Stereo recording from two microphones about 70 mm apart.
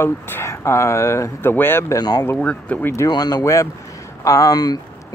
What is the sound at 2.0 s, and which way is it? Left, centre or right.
Speech, left.